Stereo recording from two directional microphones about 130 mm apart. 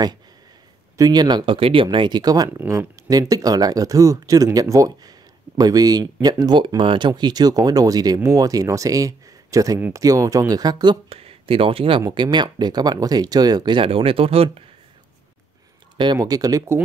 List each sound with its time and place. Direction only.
0.9 s speech: 30° right (ahead or behind)
2.5 s speech: 20° right (ahead or behind)
3.1 s speech: 30° right (ahead or behind)
11.1 s speech: 50° right (ahead or behind)
16.0 s speech: 30° right (ahead or behind)